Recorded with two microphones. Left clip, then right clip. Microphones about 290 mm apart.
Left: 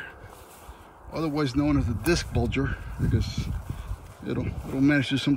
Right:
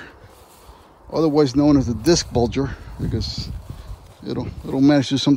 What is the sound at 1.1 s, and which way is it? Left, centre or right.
Speech, centre.